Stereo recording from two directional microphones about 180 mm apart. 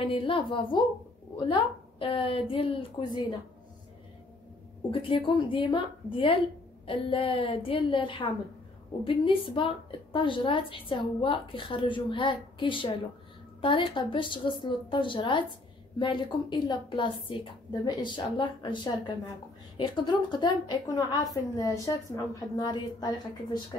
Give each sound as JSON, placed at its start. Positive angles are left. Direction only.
{"t": 0.1, "sound": "a woman's voice", "side_deg": 30}
{"t": 5.0, "sound": "a woman's voice", "side_deg": 30}